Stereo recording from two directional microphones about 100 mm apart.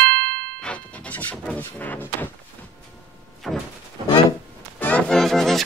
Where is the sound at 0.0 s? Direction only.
15° left (ahead or behind).